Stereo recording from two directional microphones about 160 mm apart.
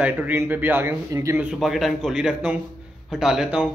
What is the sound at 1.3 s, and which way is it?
A man's voice, 5° right (ahead or behind).